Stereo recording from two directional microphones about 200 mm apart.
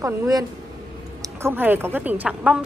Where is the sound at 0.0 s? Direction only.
15° right (ahead or behind).